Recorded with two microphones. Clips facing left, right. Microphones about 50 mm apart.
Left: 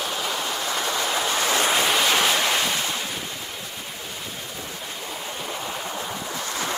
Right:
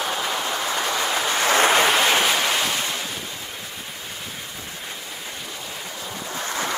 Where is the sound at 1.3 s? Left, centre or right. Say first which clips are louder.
Right 6 dB; right.